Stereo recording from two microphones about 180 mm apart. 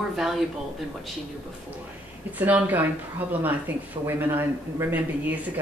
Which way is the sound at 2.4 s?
10° right (ahead or behind).